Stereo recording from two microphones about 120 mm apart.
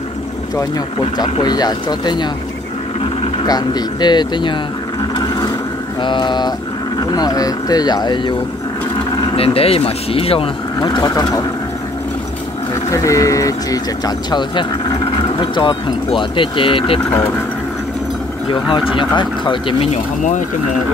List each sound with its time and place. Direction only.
1.4 s speech: 35° left (ahead or behind)
3.4 s speech: 35° left (ahead or behind)
6.0 s speech: 40° left (ahead or behind)
9.4 s speech: 55° left (ahead or behind)
10.8 s speech: 35° left (ahead or behind)
12.9 s speech: 25° left (ahead or behind); by 17.0 s 50° left (ahead or behind)
18.5 s speech: 45° left (ahead or behind)
19.9 s speech: 90° left